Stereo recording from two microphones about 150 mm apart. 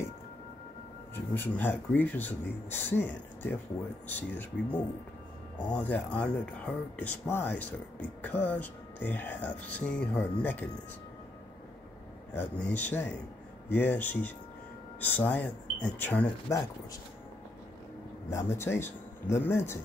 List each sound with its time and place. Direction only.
1.3 s speech: 15° left (ahead or behind)
12.4 s speech: 10° left (ahead or behind)
16.5 s speech: 20° left (ahead or behind)
18.3 s speech: 20° left (ahead or behind)